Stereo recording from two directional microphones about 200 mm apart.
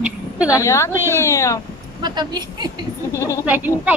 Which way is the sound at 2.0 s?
20° right (ahead or behind).